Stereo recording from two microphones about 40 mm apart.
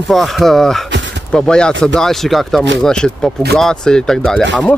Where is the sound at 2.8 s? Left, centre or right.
Centre.